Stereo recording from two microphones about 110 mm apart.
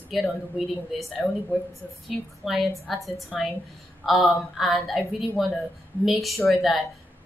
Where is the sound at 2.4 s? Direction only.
Centre (ahead or behind).